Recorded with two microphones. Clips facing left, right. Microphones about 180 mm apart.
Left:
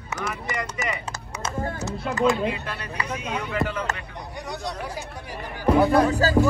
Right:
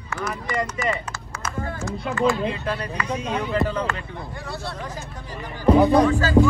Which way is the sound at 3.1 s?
35° right (ahead or behind).